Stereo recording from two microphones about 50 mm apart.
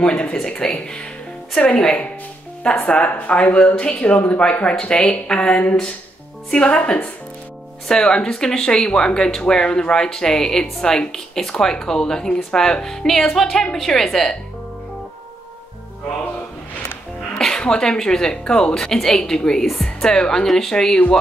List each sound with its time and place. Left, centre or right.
0.0 s a woman's voice: centre
17.4 s speech: centre